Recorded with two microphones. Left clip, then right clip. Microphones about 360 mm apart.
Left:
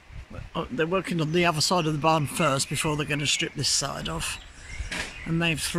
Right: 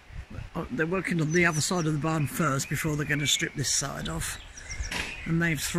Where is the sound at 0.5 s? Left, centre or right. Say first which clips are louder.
Left 3 dB; centre.